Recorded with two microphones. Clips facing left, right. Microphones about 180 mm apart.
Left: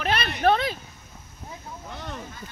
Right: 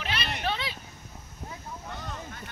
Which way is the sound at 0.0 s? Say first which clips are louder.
Left 9 dB; 55° left (ahead or behind).